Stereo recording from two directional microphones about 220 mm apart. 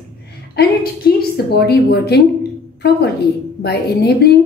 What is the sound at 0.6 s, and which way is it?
A woman's voice, 45° left (ahead or behind).